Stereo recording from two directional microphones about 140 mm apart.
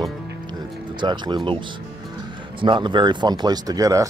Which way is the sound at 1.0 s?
30° right (ahead or behind).